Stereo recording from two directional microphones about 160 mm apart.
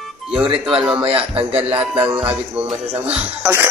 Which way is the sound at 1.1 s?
35° right (ahead or behind).